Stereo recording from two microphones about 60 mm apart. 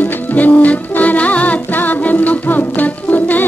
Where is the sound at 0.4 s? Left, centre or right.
Left.